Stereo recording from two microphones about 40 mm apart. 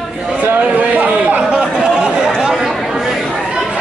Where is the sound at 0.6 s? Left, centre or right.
Right.